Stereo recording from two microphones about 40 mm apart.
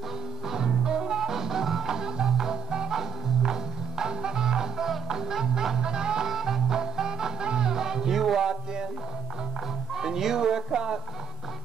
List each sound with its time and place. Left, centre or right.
0.5 s music: centre
6.3 s music: centre
9.9 s a sound: centre